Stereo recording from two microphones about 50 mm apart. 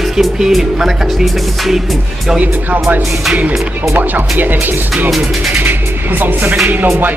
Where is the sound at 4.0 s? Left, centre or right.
Right.